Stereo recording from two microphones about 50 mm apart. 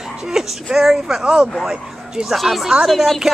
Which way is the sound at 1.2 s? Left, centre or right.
Centre.